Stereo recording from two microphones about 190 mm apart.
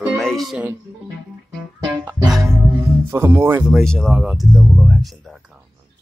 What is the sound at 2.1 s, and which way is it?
Music, 10° right (ahead or behind).